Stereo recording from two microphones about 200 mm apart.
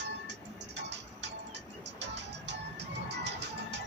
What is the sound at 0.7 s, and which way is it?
Music, 60° right (ahead or behind).